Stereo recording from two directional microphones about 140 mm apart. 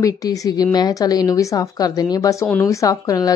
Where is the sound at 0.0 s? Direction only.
25° left (ahead or behind).